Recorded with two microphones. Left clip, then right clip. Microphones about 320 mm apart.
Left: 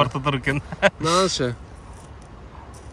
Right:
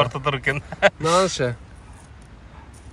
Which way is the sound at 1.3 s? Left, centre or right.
Centre.